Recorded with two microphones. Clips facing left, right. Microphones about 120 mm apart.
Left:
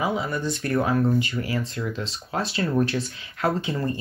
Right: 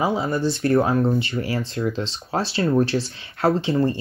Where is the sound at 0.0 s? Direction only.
30° right (ahead or behind).